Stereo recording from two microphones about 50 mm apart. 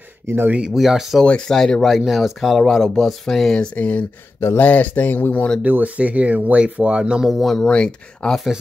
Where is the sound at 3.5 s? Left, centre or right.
Left.